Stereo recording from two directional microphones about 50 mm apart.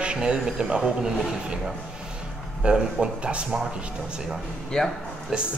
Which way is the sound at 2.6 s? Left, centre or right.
Centre.